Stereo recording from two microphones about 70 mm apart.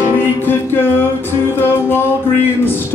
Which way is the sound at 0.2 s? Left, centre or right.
Left.